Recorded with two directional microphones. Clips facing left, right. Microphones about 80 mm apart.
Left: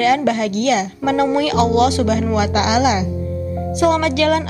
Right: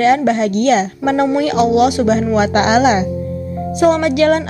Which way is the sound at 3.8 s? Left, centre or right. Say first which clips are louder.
Right 3 dB; right.